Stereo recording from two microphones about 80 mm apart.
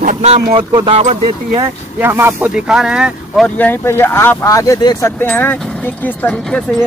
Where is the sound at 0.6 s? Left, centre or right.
Right.